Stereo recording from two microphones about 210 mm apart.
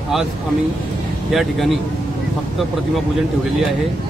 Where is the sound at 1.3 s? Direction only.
Centre (ahead or behind).